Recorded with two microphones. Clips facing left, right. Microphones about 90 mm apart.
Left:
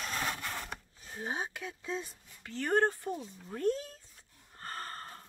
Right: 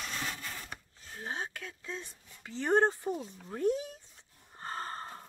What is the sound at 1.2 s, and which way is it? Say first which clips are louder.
Speech: left 2 dB; 15° left (ahead or behind).